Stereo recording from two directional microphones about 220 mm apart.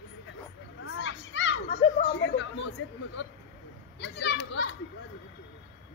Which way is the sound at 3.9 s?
50° left (ahead or behind).